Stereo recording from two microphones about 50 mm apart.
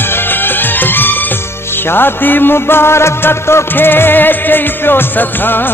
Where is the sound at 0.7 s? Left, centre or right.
Left.